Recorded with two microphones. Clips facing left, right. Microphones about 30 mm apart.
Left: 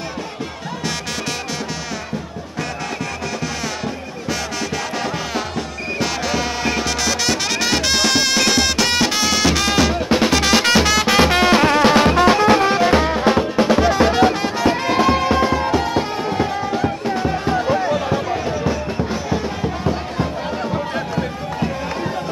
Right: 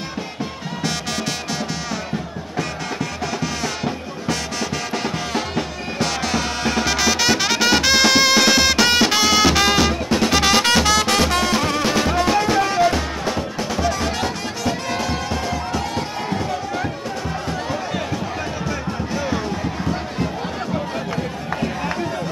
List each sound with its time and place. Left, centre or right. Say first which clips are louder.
3.3 s music: even; centre
5.9 s music: even; centre
10.0 s music: left 3 dB; left
10.3 s music: right 1 dB; centre
11.1 s music: left 5 dB; left
12.5 s music: left 3 dB; left